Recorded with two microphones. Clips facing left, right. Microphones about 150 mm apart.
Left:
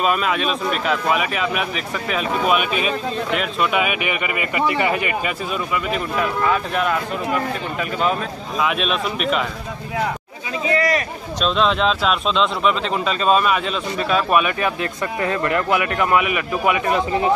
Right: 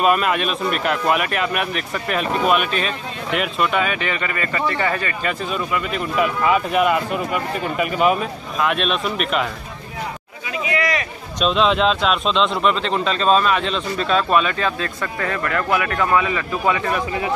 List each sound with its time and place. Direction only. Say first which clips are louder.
0.0 s speech: right 2 dB; centre (ahead or behind); by 5.3 s 15° left (ahead or behind)
5.9 s speech: right 2 dB; centre (ahead or behind)
10.6 s a sound: left 3 dB; 35° left (ahead or behind)
11.4 s speech: right 1 dB; centre (ahead or behind); by 17.3 s 20° left (ahead or behind)